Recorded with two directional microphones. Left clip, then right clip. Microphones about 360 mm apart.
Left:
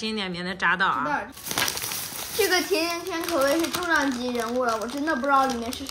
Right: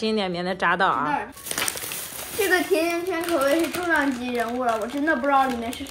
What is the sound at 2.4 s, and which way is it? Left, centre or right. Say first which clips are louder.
Speech: right 3 dB; centre.